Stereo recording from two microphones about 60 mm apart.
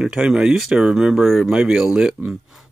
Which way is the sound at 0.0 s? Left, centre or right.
Centre.